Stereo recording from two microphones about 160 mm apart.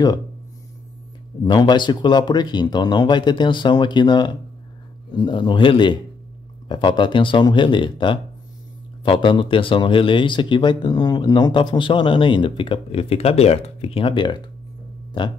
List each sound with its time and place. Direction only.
1.4 s speech: 25° left (ahead or behind)